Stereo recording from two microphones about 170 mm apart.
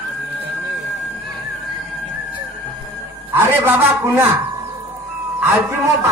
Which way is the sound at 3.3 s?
10° right (ahead or behind).